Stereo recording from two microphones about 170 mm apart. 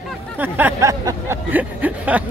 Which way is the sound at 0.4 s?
10° right (ahead or behind).